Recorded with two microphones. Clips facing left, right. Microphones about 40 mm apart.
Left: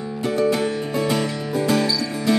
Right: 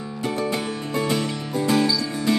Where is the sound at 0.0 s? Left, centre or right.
Centre.